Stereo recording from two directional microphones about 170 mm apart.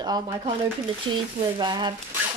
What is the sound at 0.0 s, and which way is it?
Speech, 25° right (ahead or behind).